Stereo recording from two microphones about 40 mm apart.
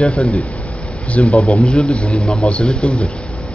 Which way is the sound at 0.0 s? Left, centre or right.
Left.